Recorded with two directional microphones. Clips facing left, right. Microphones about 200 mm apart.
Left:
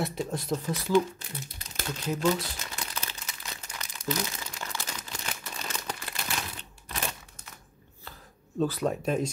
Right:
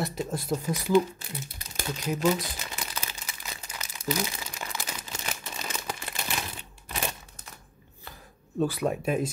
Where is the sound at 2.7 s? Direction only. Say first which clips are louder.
Right 1 dB; 5° right (ahead or behind).